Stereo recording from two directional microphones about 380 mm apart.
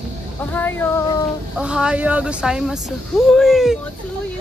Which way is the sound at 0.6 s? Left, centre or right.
Centre.